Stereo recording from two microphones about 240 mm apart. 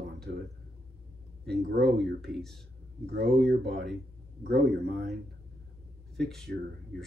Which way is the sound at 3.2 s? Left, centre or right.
Right.